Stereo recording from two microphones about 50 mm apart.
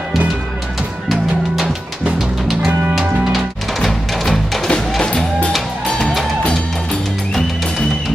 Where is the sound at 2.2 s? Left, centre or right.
Centre.